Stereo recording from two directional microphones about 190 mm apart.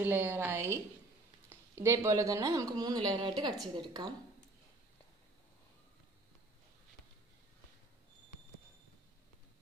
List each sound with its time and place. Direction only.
0.0 s a woman's voice: 10° right (ahead or behind)